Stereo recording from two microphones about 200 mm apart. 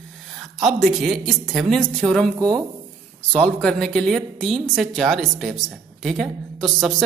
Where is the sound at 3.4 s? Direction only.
5° left (ahead or behind).